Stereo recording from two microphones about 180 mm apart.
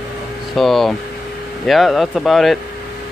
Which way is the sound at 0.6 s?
Centre (ahead or behind).